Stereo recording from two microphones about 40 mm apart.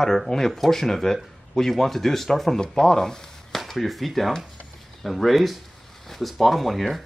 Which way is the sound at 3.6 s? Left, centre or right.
Centre.